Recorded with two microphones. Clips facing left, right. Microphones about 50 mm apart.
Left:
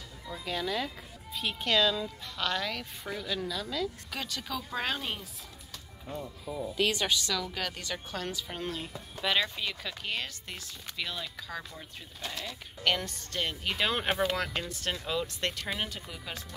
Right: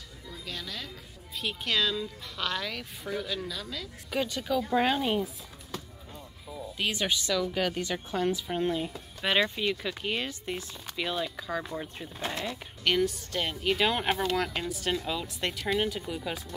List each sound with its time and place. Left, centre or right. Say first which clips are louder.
0.5 s speech: left 7 dB; centre
1.3 s speech: left 2 dB; centre
4.1 s speech: right 7 dB; centre
6.8 s speech: left 1 dB; centre
11.8 s speech: right 6 dB; right
12.8 s speech: right 4 dB; centre